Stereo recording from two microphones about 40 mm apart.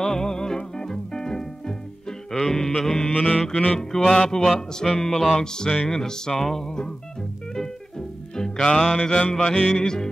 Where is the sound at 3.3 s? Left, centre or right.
Centre.